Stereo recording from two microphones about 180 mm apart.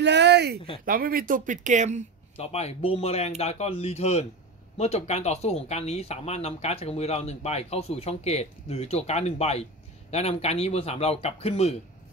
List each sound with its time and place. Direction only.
0.0 s a sound: 70° right (ahead or behind)
0.8 s speech: 55° right (ahead or behind)
2.3 s speech: 35° left (ahead or behind)